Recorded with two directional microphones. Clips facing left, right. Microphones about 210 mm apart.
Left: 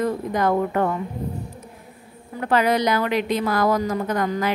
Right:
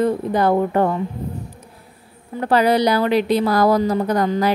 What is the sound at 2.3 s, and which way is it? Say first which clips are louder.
A woman's voice: right 4 dB; 35° right (ahead or behind).